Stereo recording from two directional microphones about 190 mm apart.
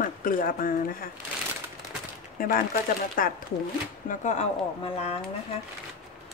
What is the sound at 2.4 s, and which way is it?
Speech, 45° left (ahead or behind).